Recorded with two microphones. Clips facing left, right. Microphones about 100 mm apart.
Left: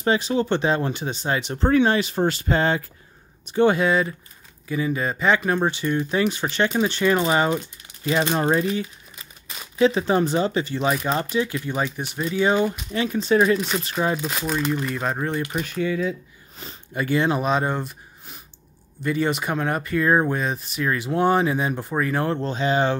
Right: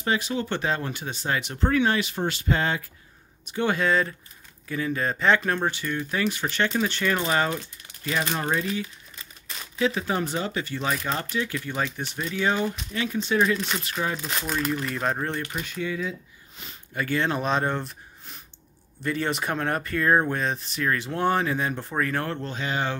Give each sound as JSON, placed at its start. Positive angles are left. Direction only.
{"t": 0.0, "sound": "speech", "side_deg": 30}
{"t": 3.7, "sound": "speech", "side_deg": 10}
{"t": 12.9, "sound": "speech", "side_deg": 35}
{"t": 13.6, "sound": "speech", "side_deg": 5}
{"t": 13.8, "sound": "speech", "side_deg": 25}
{"t": 14.3, "sound": "speech", "side_deg": 5}
{"t": 15.6, "sound": "speech", "side_deg": 55}
{"t": 16.6, "sound": "speech", "side_deg": 35}
{"t": 16.9, "sound": "speech", "side_deg": 15}